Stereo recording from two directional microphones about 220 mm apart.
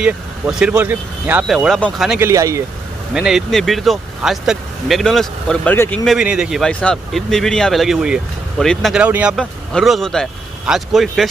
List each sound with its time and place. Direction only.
0.0 s speech: 5° right (ahead or behind)
3.2 s speech: centre (ahead or behind)
6.1 s speech: 5° right (ahead or behind)